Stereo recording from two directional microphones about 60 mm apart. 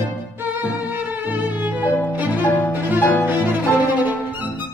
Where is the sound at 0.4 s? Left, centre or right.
Right.